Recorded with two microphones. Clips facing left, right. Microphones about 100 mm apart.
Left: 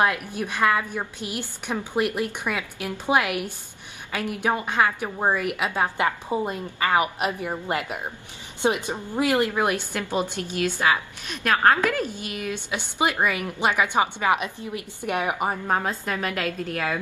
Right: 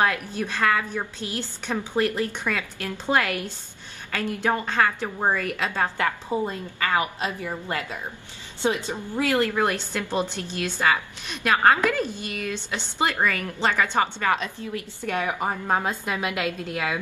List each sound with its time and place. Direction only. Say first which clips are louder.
0.0 s a woman's voice: left 1 dB; 15° left (ahead or behind)
11.4 s a woman's voice: even; 5° right (ahead or behind)
11.8 s a woman's voice: even; 10° left (ahead or behind)
15.6 s a woman's voice: even; centre (ahead or behind)